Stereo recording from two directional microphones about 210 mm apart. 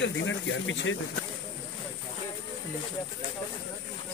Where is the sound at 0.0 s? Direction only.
60° left (ahead or behind).